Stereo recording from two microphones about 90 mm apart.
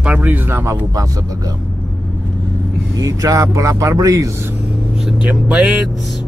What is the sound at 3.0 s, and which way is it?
Speech, 40° right (ahead or behind).